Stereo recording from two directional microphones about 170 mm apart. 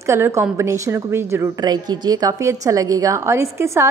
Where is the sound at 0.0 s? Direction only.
15° right (ahead or behind).